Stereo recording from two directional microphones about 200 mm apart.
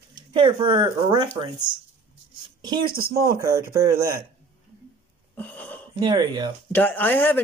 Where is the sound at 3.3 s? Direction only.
15° right (ahead or behind).